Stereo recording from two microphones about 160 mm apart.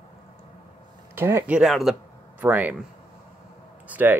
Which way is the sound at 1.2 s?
15° right (ahead or behind).